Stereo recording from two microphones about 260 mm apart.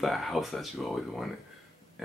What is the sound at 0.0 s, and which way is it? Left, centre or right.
Speech, centre.